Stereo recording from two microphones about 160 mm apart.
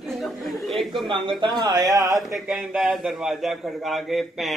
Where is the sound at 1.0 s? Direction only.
30° right (ahead or behind).